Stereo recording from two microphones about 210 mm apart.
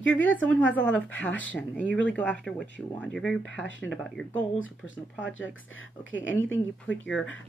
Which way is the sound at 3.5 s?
60° left (ahead or behind).